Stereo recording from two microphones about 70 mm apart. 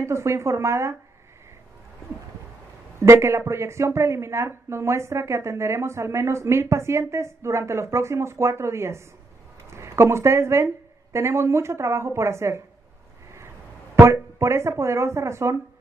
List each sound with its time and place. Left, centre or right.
0.0 s a woman's voice: right
3.0 s a woman's voice: right
13.9 s a woman's voice: right